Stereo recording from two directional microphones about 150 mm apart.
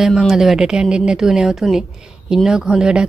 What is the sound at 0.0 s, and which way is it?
Speech, centre (ahead or behind).